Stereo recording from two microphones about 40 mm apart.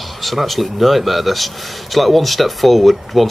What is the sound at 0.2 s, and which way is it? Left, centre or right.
Speech, centre.